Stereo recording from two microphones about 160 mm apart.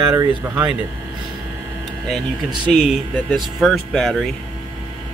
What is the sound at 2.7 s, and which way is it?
Speech, centre (ahead or behind).